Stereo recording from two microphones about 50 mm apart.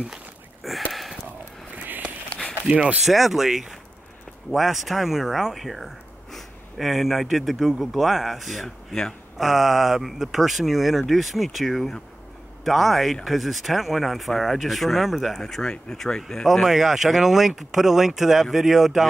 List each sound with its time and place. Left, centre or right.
0.7 s a sound: centre
1.8 s a sound: right
2.6 s speech: right
3.1 s speech: centre
9.4 s speech: centre
15.3 s speech: centre
16.6 s speech: centre